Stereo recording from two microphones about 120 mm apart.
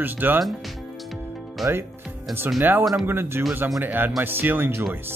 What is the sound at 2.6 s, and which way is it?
Speech, 15° right (ahead or behind).